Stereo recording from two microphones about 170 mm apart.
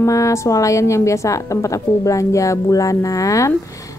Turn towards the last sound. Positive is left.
turn(degrees=20)  # may be behind; listen again after turning